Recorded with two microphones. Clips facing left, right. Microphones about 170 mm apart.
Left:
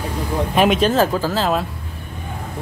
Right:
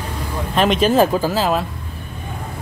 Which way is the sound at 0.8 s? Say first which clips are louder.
Right 2 dB; 15° right (ahead or behind).